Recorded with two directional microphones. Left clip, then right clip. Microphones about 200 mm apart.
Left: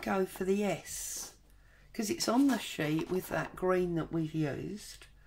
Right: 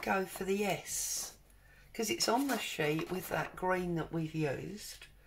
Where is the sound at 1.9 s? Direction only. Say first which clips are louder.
Right 1 dB; 45° left (ahead or behind).